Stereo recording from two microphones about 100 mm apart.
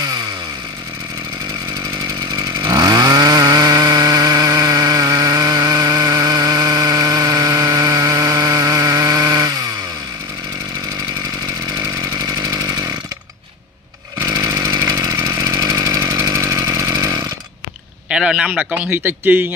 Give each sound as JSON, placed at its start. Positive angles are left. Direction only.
{"t": 2.6, "sound": "chainsaw", "side_deg": -35}
{"t": 12.4, "sound": "chainsaw", "side_deg": -40}
{"t": 14.2, "sound": "chainsaw", "side_deg": -30}
{"t": 18.1, "sound": "a man's voice", "side_deg": -10}